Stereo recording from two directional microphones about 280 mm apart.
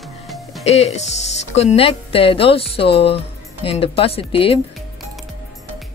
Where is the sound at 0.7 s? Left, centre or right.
Left.